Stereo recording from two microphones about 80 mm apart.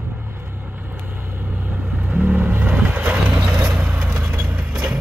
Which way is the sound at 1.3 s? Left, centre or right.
Right.